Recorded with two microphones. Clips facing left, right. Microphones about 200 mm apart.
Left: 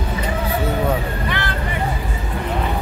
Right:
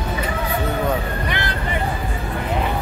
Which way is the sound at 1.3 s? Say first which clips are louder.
Left 1 dB; 20° right (ahead or behind).